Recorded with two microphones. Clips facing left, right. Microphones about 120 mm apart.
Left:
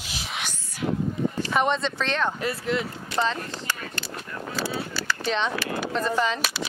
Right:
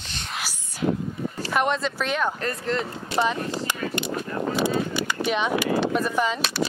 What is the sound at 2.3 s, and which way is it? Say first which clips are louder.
Speech: even; 5° left (ahead or behind).